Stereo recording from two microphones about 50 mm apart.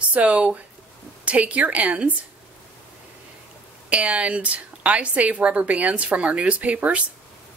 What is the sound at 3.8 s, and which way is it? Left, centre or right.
A woman's voice, right.